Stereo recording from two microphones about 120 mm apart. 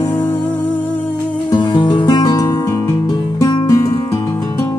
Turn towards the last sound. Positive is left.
turn(degrees=30)  # may be behind; listen again after turning